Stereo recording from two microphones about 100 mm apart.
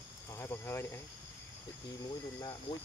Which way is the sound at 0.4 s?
25° left (ahead or behind).